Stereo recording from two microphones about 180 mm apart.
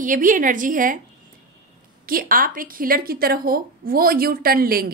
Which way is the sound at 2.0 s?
50° right (ahead or behind).